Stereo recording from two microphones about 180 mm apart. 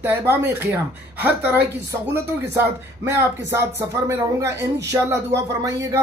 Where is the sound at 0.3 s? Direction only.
10° right (ahead or behind).